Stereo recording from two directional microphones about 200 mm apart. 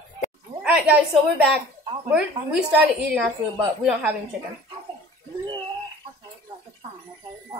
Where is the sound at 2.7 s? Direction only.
5° right (ahead or behind).